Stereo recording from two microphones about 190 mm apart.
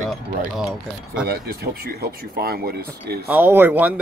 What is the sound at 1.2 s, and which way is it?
Speech, 55° right (ahead or behind).